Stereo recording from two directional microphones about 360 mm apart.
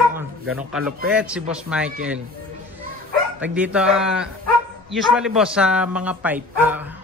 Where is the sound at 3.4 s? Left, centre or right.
Centre.